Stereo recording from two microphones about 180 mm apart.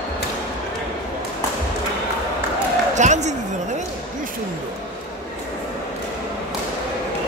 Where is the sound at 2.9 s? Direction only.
40° right (ahead or behind).